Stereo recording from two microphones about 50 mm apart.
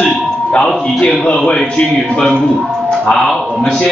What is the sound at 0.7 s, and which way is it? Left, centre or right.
Speech, centre.